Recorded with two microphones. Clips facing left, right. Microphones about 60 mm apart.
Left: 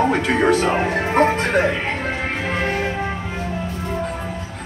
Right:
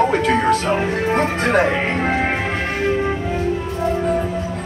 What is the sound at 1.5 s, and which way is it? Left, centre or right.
Speech, right.